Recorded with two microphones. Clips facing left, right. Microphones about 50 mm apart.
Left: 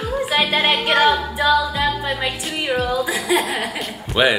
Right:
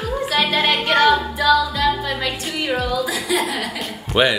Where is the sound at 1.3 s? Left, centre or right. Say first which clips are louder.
Right 1 dB; centre.